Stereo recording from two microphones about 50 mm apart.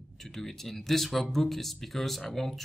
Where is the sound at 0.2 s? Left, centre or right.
Centre.